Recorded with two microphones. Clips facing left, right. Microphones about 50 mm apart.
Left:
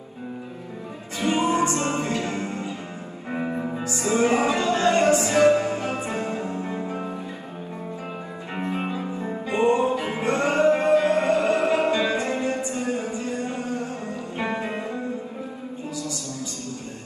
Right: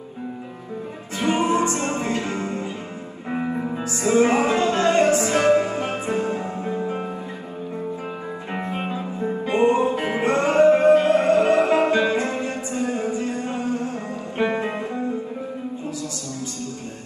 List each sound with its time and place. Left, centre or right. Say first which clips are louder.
1.2 s music: right 1 dB; right
3.3 s music: right 2 dB; right
3.9 s music: right 3 dB; right
8.5 s music: left 1 dB; right